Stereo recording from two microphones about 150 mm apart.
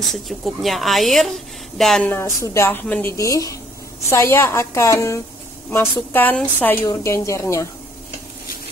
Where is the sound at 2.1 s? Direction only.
20° left (ahead or behind).